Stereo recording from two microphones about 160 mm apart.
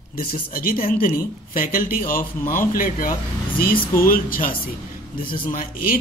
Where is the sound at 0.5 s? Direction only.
60° left (ahead or behind).